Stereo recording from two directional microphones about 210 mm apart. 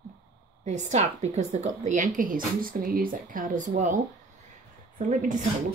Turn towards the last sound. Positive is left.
turn(degrees=-40)  # may be behind; listen again after turning